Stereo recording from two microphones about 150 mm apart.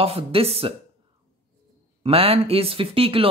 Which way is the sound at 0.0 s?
40° right (ahead or behind).